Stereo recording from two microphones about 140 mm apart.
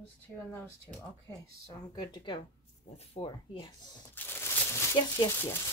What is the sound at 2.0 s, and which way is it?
Speech, 35° left (ahead or behind).